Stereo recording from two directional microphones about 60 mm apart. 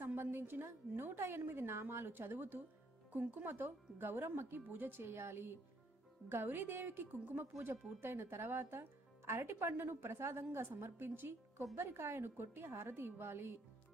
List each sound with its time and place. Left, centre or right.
0.0 s a woman's voice: right
4.6 s a woman's voice: right